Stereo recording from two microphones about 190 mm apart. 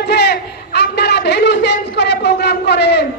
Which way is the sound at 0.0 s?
60° left (ahead or behind).